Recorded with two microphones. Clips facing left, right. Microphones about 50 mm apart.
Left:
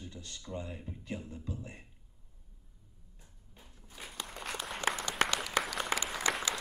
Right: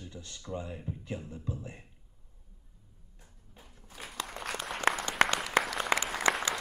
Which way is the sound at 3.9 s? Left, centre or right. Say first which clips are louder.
Right 4 dB; right.